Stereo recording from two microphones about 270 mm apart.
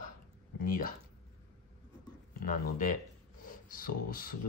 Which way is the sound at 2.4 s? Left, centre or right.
Left.